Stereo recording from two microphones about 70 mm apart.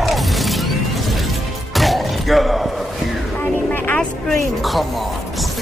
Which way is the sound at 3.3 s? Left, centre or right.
Left.